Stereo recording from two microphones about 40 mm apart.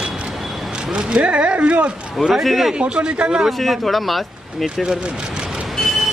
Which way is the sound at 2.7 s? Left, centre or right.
Right.